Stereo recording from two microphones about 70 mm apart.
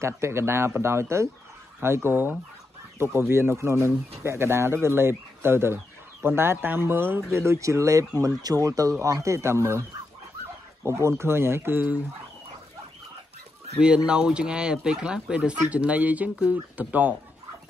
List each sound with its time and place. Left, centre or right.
0.0 s speech: right
10.9 s speech: right
13.7 s speech: centre